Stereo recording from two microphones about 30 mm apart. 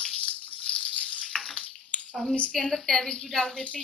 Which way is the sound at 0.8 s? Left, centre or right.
Left.